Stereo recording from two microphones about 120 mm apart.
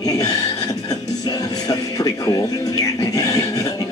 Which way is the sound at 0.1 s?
30° left (ahead or behind).